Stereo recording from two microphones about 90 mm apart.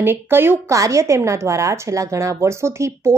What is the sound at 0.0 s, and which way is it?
A woman's voice, 25° right (ahead or behind).